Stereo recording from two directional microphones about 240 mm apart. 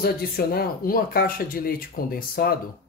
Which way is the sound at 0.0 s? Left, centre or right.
Left.